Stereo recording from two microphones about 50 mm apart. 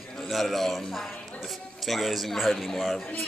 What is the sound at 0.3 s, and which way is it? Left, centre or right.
A man's voice, centre.